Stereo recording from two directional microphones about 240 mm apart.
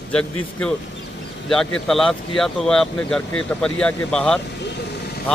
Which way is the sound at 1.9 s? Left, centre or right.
Centre.